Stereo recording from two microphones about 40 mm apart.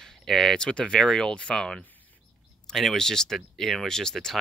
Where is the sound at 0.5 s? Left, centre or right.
Left.